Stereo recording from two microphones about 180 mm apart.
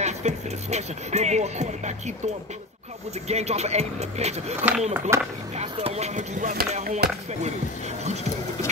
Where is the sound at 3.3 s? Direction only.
35° right (ahead or behind).